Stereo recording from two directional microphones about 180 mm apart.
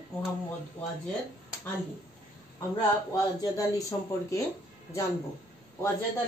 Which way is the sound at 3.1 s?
20° left (ahead or behind).